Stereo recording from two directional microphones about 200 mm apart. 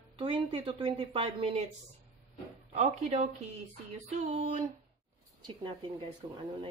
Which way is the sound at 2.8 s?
35° right (ahead or behind).